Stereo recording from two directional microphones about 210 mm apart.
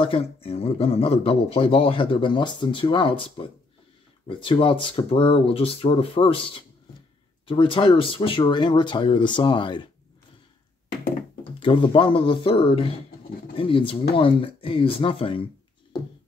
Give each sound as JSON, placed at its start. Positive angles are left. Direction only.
{"t": 0.0, "sound": "speech", "side_deg": 25}
{"t": 11.6, "sound": "speech", "side_deg": 25}